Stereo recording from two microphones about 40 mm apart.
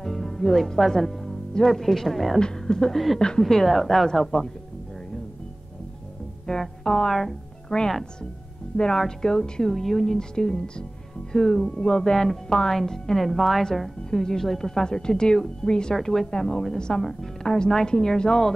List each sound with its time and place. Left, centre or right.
0.0 s music: centre
0.7 s a woman's voice: centre
3.2 s a woman's voice: centre
6.4 s music: centre
7.1 s a woman's voice: centre
7.7 s speech: left
8.9 s a woman's voice: centre
9.7 s a woman's voice: centre
10.1 s a woman's voice: centre
11.3 s a woman's voice: centre
11.7 s a woman's voice: centre
14.7 s a woman's voice: centre